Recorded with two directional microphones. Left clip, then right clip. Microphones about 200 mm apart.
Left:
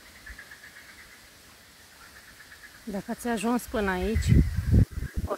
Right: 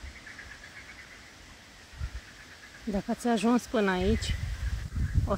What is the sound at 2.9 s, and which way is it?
Speech, 5° right (ahead or behind).